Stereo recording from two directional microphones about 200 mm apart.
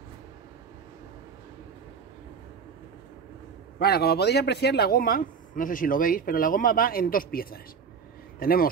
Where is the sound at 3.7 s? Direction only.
50° left (ahead or behind).